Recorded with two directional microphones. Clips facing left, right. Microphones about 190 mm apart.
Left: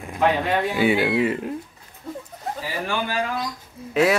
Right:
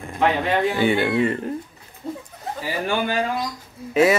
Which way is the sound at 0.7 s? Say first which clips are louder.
Even; 5° left (ahead or behind).